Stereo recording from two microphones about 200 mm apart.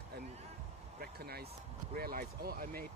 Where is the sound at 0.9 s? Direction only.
50° right (ahead or behind).